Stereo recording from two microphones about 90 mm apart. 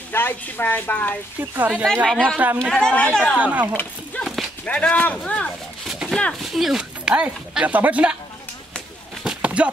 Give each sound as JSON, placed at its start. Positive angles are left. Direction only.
{"t": 0.1, "sound": "a woman's voice", "side_deg": 20}
{"t": 1.4, "sound": "speech", "side_deg": -20}
{"t": 2.0, "sound": "speech", "side_deg": 10}
{"t": 2.3, "sound": "speech", "side_deg": -20}
{"t": 2.6, "sound": "speech", "side_deg": 10}
{"t": 3.3, "sound": "speech", "side_deg": -15}
{"t": 4.6, "sound": "speech", "side_deg": 15}
{"t": 5.9, "sound": "a sound", "side_deg": -5}
{"t": 6.4, "sound": "speech", "side_deg": -5}
{"t": 9.2, "sound": "a sound", "side_deg": -10}